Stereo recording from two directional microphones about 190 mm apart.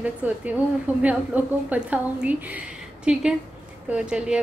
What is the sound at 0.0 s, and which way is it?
A woman's voice, 5° right (ahead or behind).